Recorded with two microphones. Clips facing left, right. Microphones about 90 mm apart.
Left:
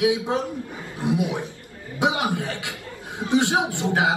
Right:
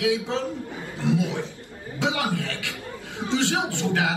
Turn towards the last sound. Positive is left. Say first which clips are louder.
# left 2 dB
turn(degrees=20)  # may be behind; listen again after turning